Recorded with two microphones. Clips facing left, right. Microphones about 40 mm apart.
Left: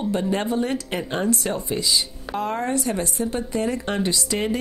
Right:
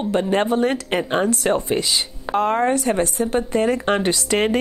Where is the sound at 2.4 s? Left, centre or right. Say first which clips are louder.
Right 6 dB; right.